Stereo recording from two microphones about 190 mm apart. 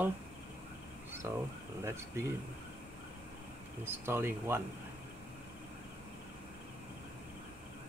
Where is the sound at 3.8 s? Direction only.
10° right (ahead or behind).